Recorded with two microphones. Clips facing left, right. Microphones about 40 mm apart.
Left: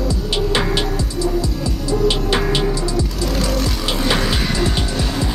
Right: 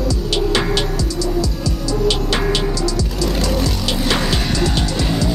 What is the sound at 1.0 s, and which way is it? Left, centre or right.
Music, left.